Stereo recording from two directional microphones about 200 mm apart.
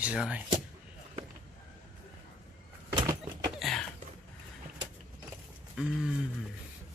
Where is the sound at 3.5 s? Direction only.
Centre (ahead or behind).